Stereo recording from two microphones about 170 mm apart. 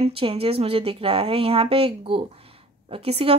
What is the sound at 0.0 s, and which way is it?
Speech, 35° right (ahead or behind).